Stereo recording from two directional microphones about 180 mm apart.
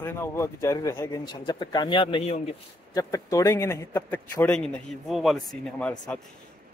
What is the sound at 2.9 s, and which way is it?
Speech, 20° left (ahead or behind).